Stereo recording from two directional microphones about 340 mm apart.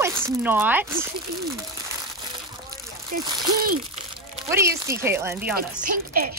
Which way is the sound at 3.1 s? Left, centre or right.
Right.